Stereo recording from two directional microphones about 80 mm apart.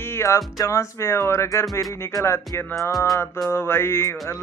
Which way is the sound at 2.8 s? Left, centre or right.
Left.